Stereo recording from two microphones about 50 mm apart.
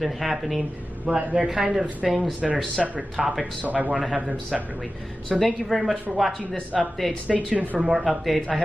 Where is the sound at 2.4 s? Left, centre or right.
Centre.